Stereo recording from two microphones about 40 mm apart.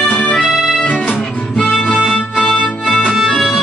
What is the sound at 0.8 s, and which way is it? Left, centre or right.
Music, left.